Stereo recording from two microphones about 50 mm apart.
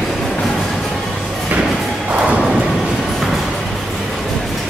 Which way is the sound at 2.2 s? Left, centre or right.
Centre.